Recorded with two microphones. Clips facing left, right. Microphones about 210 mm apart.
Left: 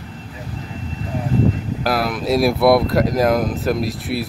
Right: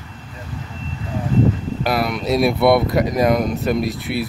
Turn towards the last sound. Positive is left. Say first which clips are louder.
# right 1 dB
turn(degrees=0)  # may be behind; listen again after turning